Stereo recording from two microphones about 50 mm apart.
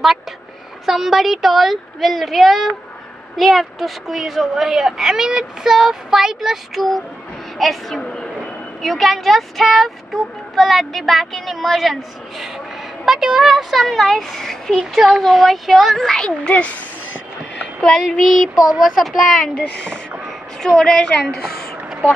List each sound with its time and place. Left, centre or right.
0.8 s child singing: centre
8.0 s a sound: centre
8.8 s child singing: centre
15.0 s child singing: centre
16.1 s a woman's voice: centre
17.8 s child singing: centre
19.5 s a woman's voice: left
20.6 s a woman's voice: centre